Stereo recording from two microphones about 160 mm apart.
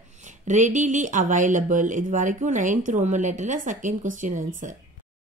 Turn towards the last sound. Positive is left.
turn(degrees=-50)  # may be behind; listen again after turning